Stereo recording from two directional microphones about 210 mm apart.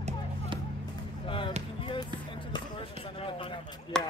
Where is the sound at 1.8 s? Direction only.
25° left (ahead or behind).